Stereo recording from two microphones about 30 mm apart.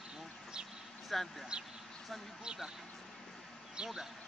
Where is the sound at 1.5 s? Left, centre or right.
Right.